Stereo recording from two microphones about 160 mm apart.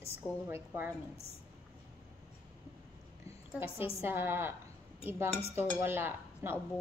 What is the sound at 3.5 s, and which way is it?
A woman's voice, 15° right (ahead or behind).